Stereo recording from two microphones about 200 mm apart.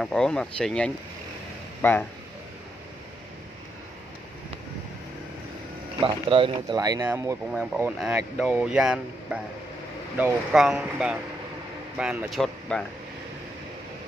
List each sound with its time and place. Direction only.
0.0 s speech: 5° left (ahead or behind)
5.9 s speech: 25° right (ahead or behind)
7.5 s speech: 5° right (ahead or behind)